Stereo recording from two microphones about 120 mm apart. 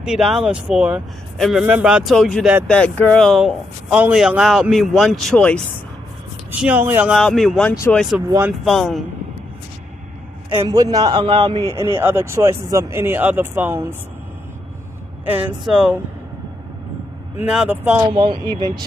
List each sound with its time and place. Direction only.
0.0 s speech: 5° right (ahead or behind)
2.1 s speech: 5° left (ahead or behind)
6.6 s speech: 15° right (ahead or behind)
7.2 s speech: 5° left (ahead or behind)
8.3 s speech: 20° right (ahead or behind)
8.6 s speech: centre (ahead or behind)
10.5 s a man's voice: 30° right (ahead or behind)
11.7 s speech: 20° right (ahead or behind)
15.2 s speech: 10° right (ahead or behind)
17.5 s speech: 10° right (ahead or behind)
18.1 s a man's voice: 40° right (ahead or behind)